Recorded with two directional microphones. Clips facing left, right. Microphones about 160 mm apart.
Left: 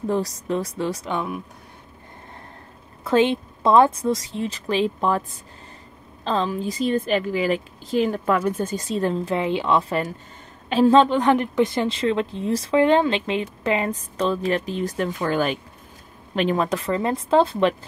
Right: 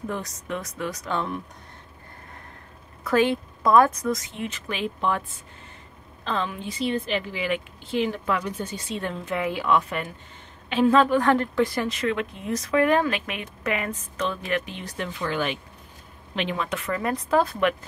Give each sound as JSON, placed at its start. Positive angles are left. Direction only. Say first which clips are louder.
{"t": 0.0, "sound": "a woman's voice", "louder": "left 8 dB", "side_deg": 30}
{"t": 1.1, "sound": "speech", "louder": "left 1 dB", "side_deg": 10}
{"t": 3.0, "sound": "a woman's voice", "louder": "left 3 dB", "side_deg": 25}
{"t": 6.2, "sound": "a woman's voice", "louder": "left 5 dB", "side_deg": 35}